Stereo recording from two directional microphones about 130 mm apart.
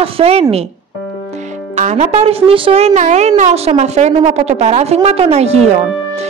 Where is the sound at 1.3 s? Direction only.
65° right (ahead or behind).